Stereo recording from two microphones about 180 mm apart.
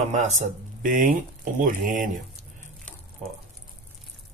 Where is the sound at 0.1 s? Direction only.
40° right (ahead or behind).